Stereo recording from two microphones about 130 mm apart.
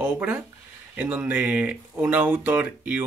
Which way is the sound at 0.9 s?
10° right (ahead or behind).